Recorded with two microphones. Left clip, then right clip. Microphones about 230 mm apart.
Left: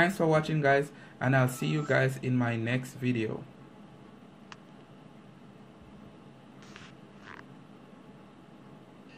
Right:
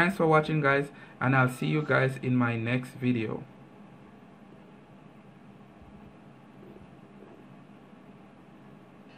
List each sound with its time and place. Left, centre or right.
0.0 s speech: right